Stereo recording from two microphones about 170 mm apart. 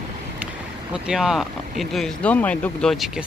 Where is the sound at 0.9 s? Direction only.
5° right (ahead or behind).